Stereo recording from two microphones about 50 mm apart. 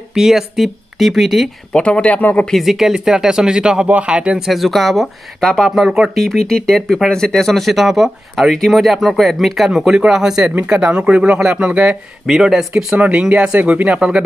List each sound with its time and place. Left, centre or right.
0.1 s speech: centre
1.7 s speech: left
2.6 s speech: centre
4.4 s speech: centre
5.0 s speech: centre
5.6 s speech: centre
6.1 s speech: centre
12.3 s speech: centre
12.9 s speech: right